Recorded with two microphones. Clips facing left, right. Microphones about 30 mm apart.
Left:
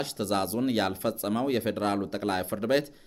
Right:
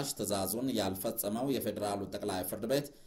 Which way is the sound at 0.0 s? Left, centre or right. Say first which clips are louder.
Left 6 dB; left.